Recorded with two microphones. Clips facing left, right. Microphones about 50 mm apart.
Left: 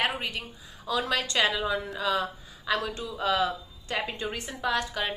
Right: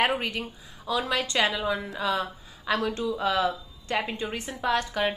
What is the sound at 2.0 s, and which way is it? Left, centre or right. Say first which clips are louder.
Speech: even; centre.